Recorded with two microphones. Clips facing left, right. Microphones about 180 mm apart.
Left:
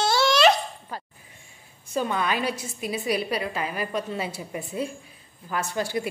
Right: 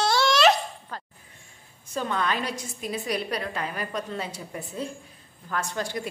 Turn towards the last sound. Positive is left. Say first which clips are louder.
# left 3 dB
turn(degrees=10)  # may be behind; listen again after turning